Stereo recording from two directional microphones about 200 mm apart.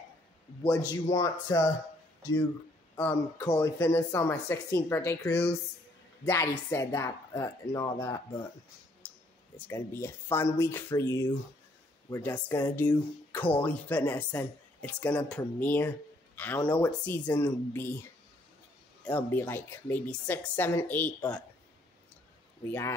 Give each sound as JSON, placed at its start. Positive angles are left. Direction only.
{"t": 1.1, "sound": "speech", "side_deg": 15}
{"t": 3.0, "sound": "speech", "side_deg": 10}
{"t": 9.0, "sound": "clicking", "side_deg": 10}
{"t": 9.6, "sound": "speech", "side_deg": 15}
{"t": 19.0, "sound": "speech", "side_deg": 10}
{"t": 22.7, "sound": "speech", "side_deg": 15}